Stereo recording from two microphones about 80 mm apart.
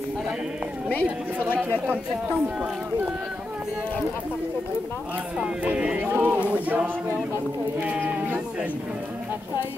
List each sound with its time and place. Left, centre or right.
1.0 s speech: right
5.4 s speech: centre